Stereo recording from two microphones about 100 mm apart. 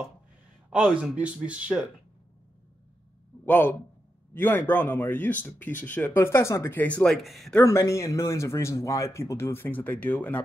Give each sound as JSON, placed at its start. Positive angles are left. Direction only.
{"t": 0.7, "sound": "speech", "side_deg": -10}
{"t": 3.4, "sound": "a man's voice", "side_deg": 20}
{"t": 7.0, "sound": "speech", "side_deg": 0}
{"t": 7.6, "sound": "speech", "side_deg": 30}